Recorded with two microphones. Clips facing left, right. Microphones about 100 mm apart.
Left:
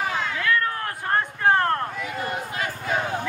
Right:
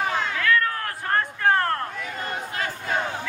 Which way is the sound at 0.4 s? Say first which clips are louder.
Right 1 dB; 25° left (ahead or behind).